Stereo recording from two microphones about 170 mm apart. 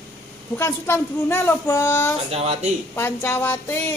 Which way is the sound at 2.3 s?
40° right (ahead or behind).